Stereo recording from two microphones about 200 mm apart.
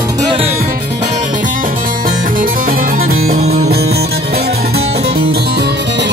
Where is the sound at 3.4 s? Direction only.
35° right (ahead or behind).